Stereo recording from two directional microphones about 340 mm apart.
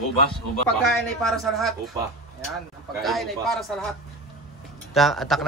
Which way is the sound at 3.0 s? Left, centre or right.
Centre.